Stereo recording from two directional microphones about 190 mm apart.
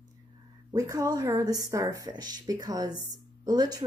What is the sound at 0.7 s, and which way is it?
A woman's voice, 20° right (ahead or behind).